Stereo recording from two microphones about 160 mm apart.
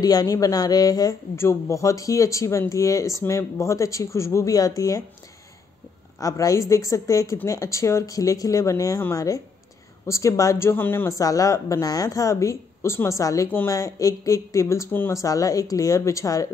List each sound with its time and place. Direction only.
0.0 s a woman's voice: 25° left (ahead or behind)
6.1 s a woman's voice: 20° left (ahead or behind)